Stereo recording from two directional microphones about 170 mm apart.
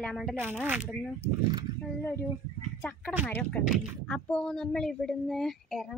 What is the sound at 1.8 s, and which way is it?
Speech, 10° left (ahead or behind).